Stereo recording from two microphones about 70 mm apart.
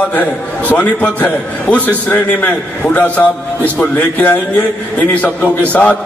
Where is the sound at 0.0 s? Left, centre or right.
Left.